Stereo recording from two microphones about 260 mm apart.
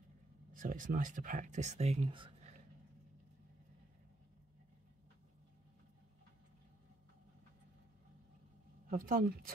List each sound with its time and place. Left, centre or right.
0.5 s speech: right
8.9 s speech: right